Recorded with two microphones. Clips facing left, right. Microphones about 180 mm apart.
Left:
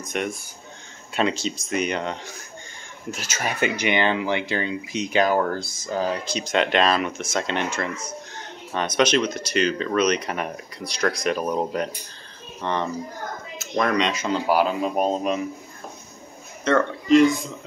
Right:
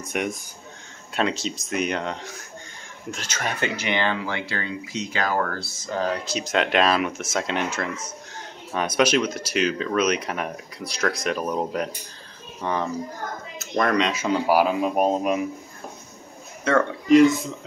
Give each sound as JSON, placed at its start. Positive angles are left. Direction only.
{"t": 0.0, "sound": "speech", "side_deg": -10}
{"t": 1.1, "sound": "speech", "side_deg": 0}
{"t": 5.9, "sound": "speech", "side_deg": 5}
{"t": 16.6, "sound": "speech", "side_deg": -10}